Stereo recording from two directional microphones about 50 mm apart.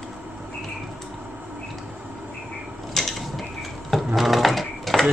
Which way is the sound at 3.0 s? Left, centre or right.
Centre.